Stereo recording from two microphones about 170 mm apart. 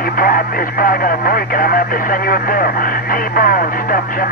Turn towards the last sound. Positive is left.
turn(degrees=55)  # may be behind; listen again after turning